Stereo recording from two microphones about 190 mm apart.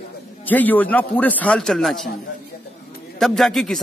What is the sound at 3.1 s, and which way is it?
Speech, centre (ahead or behind).